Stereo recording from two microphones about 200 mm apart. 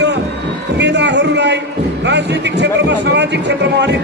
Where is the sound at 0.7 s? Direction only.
60° right (ahead or behind).